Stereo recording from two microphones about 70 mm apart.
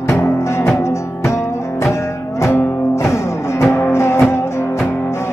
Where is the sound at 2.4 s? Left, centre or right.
Left.